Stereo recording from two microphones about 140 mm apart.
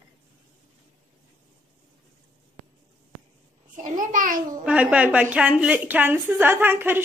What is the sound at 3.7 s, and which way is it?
Speech, 75° right (ahead or behind).